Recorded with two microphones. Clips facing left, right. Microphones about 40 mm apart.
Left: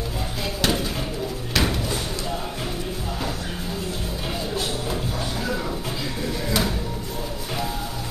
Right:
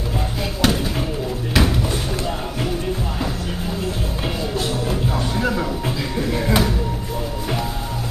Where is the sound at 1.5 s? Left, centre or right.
Centre.